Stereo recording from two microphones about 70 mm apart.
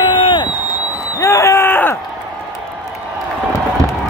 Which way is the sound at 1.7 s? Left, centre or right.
Left.